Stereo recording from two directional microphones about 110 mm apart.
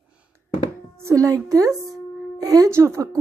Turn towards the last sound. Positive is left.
turn(degrees=-25)  # may be behind; listen again after turning